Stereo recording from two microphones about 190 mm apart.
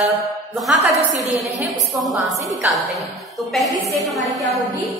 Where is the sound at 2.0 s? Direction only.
Centre (ahead or behind).